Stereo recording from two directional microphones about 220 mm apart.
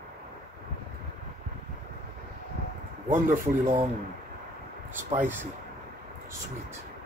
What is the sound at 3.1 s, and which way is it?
Speech, 35° right (ahead or behind).